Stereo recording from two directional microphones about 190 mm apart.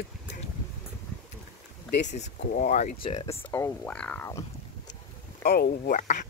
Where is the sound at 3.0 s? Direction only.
30° left (ahead or behind).